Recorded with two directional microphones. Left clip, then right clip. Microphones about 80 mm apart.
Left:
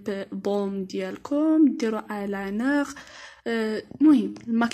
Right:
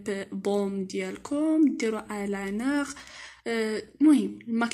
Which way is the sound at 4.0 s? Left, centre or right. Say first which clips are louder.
Left 2 dB; left.